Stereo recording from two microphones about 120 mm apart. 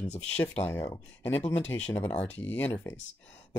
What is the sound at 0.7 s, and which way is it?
Speech, 20° left (ahead or behind).